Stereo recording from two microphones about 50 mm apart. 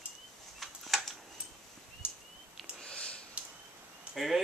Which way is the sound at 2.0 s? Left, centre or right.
Right.